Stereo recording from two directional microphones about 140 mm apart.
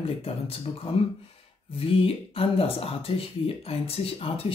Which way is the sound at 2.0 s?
45° left (ahead or behind).